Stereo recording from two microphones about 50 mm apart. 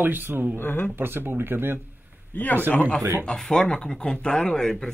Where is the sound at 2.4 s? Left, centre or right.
Left.